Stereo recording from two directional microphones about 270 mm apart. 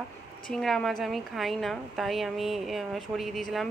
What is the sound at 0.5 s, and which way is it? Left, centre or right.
A woman's voice, centre.